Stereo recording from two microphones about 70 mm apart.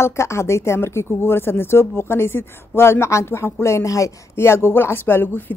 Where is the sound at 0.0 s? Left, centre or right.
Left.